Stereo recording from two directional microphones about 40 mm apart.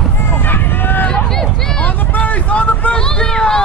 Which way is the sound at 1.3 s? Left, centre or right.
Centre.